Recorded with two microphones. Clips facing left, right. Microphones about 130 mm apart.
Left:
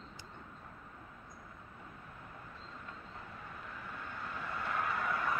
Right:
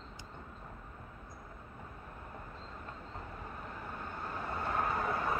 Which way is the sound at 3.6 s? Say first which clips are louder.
Right 2 dB; 40° right (ahead or behind).